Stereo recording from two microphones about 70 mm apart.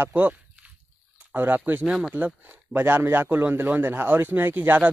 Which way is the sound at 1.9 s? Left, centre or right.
Centre.